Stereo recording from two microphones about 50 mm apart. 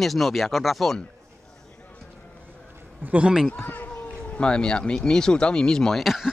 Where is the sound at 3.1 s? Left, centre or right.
Right.